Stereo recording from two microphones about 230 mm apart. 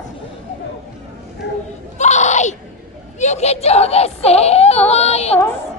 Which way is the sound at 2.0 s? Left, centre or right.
Left.